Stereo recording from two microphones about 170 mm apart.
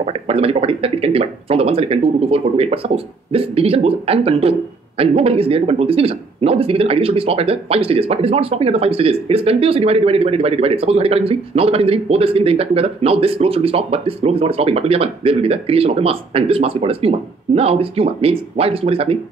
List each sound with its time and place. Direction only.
0.0 s speech: 35° right (ahead or behind)